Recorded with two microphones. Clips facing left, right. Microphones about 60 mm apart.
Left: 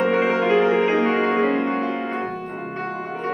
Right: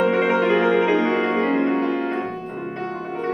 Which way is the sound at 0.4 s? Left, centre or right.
Right.